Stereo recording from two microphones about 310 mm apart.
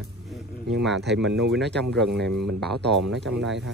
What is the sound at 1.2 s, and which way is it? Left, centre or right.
Speech, centre.